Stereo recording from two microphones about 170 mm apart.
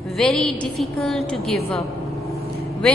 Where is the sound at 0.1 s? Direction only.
Centre (ahead or behind).